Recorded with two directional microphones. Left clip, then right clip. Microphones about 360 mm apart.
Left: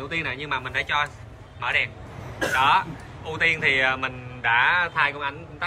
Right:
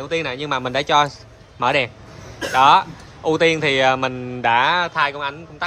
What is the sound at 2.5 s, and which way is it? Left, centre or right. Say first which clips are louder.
Speech: right 7 dB; centre.